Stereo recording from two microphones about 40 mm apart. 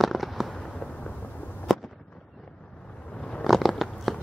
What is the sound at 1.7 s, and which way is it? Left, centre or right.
Fireworks, centre.